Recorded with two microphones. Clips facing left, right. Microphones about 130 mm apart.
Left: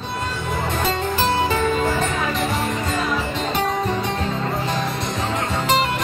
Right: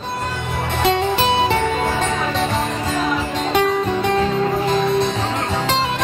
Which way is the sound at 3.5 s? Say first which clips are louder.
Right 5 dB; 75° right (ahead or behind).